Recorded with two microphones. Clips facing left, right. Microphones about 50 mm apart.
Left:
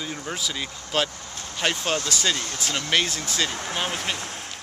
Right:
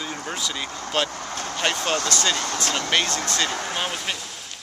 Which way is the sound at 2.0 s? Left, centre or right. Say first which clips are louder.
Right 2 dB; centre.